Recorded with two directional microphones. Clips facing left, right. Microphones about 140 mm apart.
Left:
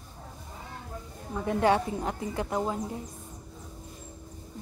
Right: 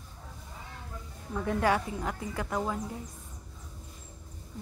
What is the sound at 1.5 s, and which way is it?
A woman's voice, 25° left (ahead or behind).